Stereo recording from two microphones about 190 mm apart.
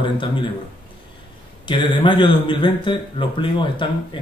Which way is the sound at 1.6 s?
25° left (ahead or behind).